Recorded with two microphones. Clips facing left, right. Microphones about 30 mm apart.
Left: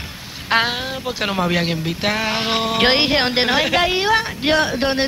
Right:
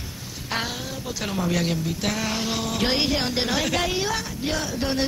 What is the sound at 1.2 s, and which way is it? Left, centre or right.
Speech, left.